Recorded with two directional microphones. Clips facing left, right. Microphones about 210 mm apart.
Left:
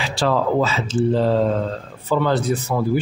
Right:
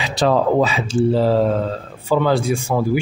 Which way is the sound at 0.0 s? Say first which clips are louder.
Right 3 dB; 20° right (ahead or behind).